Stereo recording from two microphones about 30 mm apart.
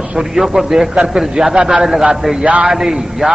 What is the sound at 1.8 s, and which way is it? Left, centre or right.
A man's voice, centre.